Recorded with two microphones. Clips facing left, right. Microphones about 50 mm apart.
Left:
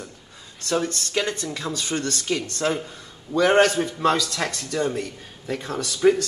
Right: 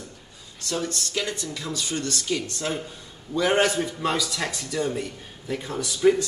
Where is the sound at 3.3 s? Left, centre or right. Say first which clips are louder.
Left 4 dB; left.